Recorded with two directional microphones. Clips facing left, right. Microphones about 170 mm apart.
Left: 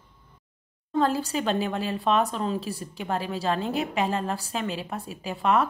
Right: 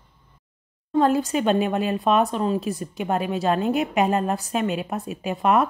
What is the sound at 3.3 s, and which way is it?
Speech, 15° right (ahead or behind).